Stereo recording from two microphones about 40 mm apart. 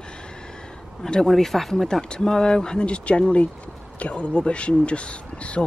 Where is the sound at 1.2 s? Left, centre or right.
Centre.